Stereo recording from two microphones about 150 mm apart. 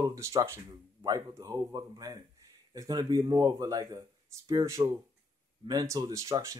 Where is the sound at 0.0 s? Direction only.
20° right (ahead or behind).